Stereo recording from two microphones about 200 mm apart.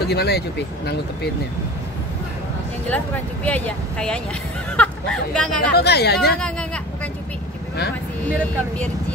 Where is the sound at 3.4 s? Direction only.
5° left (ahead or behind).